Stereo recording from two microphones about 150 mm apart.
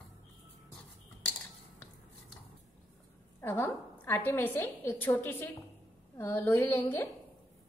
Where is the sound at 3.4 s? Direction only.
15° left (ahead or behind).